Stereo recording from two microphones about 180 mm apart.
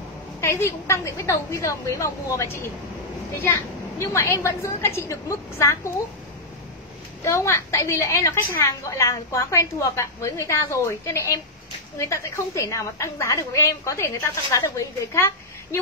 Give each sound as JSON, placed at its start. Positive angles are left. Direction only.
{"t": 0.4, "sound": "a woman's voice", "side_deg": 15}
{"t": 4.0, "sound": "a woman's voice", "side_deg": 15}
{"t": 7.2, "sound": "a woman's voice", "side_deg": 15}